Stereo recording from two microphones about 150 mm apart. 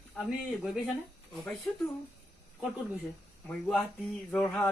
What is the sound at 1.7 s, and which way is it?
Speech, 5° left (ahead or behind).